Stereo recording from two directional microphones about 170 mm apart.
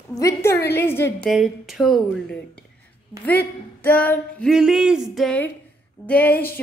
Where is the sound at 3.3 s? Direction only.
10° left (ahead or behind).